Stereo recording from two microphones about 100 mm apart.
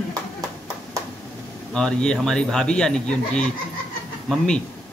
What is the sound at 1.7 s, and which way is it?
Speech, 5° left (ahead or behind).